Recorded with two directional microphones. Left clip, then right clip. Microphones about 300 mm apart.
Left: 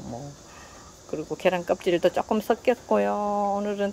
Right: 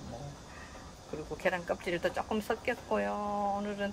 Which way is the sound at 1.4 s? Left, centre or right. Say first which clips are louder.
Left 9 dB; left.